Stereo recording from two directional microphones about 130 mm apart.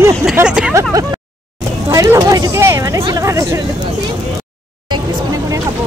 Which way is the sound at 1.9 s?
25° right (ahead or behind).